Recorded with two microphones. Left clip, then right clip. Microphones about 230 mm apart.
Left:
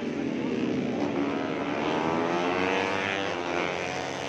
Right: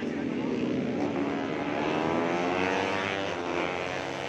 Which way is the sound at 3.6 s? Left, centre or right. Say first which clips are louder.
Left 1 dB; left.